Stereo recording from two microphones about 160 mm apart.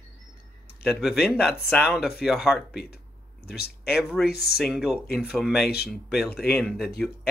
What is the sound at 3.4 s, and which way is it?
Speech, 80° left.